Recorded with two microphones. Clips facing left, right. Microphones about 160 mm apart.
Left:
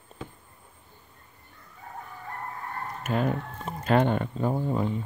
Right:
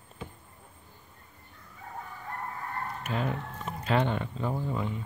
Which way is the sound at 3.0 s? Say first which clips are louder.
Left 6 dB; 45° left (ahead or behind).